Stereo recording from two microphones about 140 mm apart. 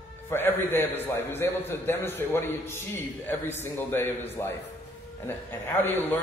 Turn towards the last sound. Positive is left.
turn(degrees=15)  # may be behind; listen again after turning